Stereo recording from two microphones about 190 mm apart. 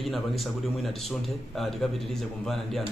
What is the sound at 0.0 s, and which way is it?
Speech, centre (ahead or behind).